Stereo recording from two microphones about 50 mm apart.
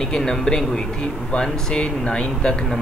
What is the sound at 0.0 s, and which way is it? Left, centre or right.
Speech, centre.